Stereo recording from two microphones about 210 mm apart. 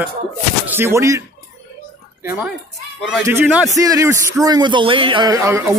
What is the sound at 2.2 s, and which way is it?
A woman's voice, 10° right (ahead or behind).